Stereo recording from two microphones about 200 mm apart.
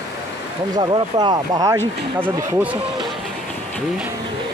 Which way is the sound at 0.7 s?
20° right (ahead or behind).